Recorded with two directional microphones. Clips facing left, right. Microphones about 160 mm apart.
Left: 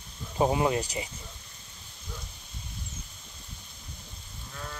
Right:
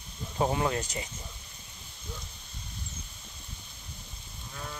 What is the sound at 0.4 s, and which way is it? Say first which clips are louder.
Speech: left 3 dB; 15° left (ahead or behind).